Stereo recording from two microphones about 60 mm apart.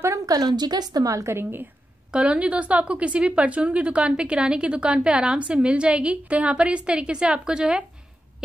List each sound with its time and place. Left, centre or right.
0.3 s a woman's voice: right
1.2 s a woman's voice: right
2.1 s speech: centre